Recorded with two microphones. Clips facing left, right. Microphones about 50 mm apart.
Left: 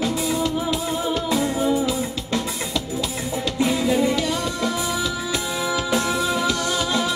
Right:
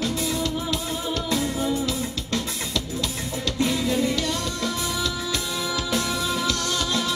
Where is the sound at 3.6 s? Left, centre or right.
Centre.